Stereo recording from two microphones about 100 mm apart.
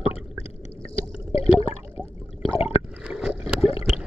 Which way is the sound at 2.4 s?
75° left (ahead or behind).